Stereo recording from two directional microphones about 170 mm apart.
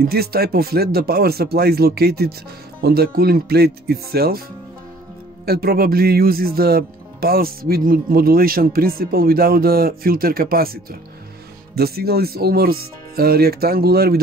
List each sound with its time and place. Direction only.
0.0 s speech: 65° right (ahead or behind)
5.4 s speech: 65° right (ahead or behind)